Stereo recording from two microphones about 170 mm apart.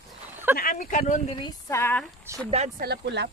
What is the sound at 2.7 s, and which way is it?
Speech, 80° right.